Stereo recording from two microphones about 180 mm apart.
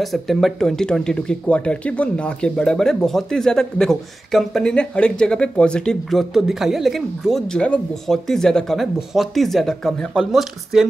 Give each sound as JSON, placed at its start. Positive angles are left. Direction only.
{"t": 0.0, "sound": "speech", "side_deg": 0}